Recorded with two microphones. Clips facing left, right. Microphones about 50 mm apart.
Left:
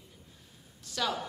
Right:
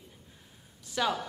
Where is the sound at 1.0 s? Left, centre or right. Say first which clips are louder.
Right 3 dB; centre.